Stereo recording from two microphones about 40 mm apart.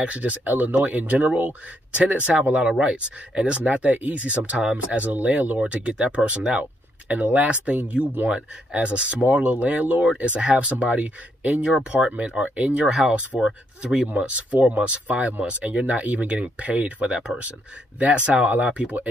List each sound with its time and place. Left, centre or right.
0.0 s speech: right
7.1 s speech: right
10.1 s speech: right
14.1 s speech: right